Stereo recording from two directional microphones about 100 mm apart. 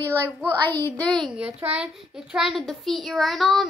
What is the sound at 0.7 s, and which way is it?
Speech, 20° left (ahead or behind).